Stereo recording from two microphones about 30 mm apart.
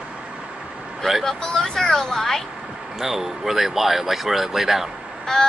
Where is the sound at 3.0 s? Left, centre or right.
Centre.